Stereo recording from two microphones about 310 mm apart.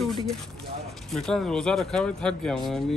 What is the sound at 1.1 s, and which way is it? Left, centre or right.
Speech, centre.